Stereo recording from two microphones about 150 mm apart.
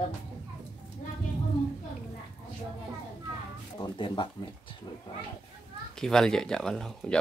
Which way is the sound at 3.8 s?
30° left (ahead or behind).